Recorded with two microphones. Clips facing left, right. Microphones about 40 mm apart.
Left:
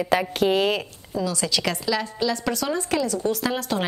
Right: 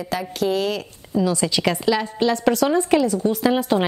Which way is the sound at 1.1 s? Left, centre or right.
Centre.